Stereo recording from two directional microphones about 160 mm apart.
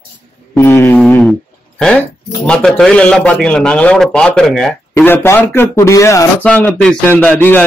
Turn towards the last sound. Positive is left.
turn(degrees=10)  # may be behind; listen again after turning